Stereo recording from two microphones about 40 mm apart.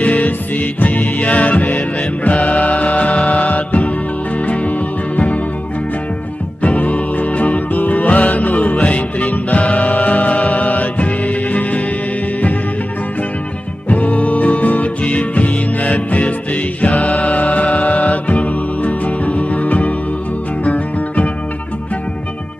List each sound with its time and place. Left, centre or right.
0.0 s music: left
6.6 s music: left
13.8 s music: left